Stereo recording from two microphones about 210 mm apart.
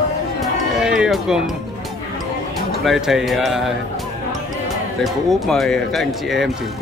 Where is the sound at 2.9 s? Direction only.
Centre (ahead or behind).